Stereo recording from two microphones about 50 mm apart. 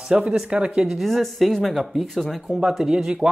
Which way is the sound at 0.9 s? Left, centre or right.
Centre.